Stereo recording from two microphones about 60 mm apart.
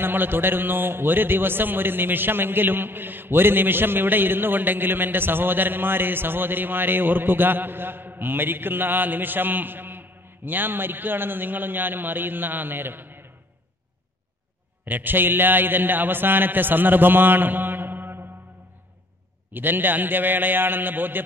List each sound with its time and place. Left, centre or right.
0.0 s a man's voice: right
14.9 s a man's voice: right
19.5 s a man's voice: right